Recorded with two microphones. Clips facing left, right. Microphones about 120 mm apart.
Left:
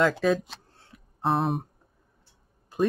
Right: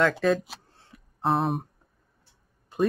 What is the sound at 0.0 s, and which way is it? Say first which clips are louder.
Speech: even; centre (ahead or behind).